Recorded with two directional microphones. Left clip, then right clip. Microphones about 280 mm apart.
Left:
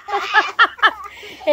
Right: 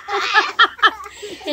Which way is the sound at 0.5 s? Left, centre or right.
Centre.